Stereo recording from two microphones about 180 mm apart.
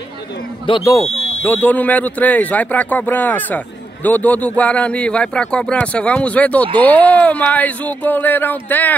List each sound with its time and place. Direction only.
0.7 s speech: 30° left (ahead or behind)
1.4 s speech: 10° left (ahead or behind)